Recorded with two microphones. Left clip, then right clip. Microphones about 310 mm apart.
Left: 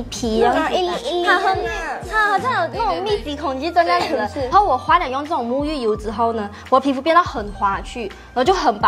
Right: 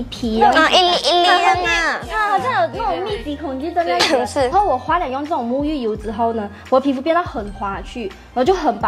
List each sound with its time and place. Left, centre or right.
0.2 s a woman's voice: left
0.6 s speech: right
1.6 s music: right
2.1 s music: left
4.0 s speech: right
4.5 s a woman's voice: left